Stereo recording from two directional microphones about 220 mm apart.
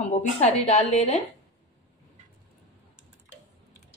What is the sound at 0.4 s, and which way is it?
Speech, 30° left (ahead or behind).